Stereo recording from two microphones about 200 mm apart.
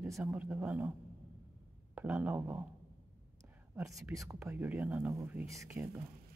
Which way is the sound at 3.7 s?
15° right (ahead or behind).